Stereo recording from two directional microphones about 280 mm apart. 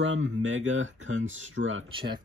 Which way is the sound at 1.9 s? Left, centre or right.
Centre.